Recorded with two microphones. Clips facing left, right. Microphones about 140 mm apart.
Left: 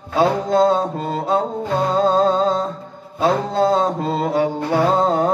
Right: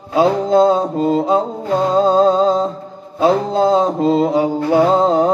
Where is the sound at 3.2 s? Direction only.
15° right (ahead or behind).